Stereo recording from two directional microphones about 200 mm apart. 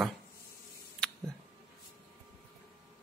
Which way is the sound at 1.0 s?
5° left (ahead or behind).